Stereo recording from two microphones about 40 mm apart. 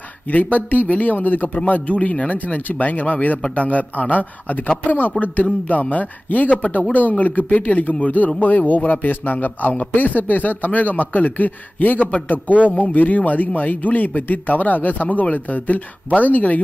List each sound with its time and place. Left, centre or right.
0.3 s a man's voice: left
1.7 s a man's voice: left